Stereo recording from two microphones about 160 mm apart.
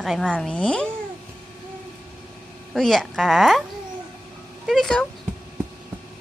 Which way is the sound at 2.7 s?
Centre (ahead or behind).